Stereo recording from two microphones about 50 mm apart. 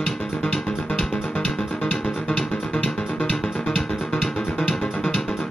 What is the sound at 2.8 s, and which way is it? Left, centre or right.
Music, centre.